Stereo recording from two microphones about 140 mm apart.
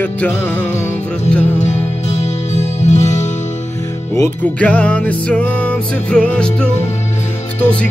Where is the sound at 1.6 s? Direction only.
55° left (ahead or behind).